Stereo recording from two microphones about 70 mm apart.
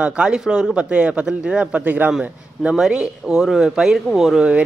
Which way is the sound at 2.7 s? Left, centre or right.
Centre.